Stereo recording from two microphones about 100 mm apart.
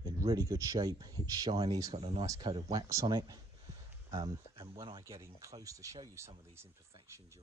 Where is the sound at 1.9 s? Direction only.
70° right (ahead or behind).